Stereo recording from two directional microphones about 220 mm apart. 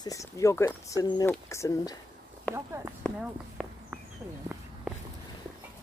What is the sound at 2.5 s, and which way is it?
Speech, 10° right (ahead or behind).